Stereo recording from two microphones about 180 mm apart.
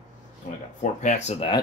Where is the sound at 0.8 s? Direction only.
40° left (ahead or behind).